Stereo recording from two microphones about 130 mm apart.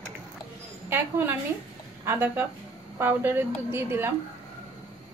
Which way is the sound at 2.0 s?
15° right (ahead or behind).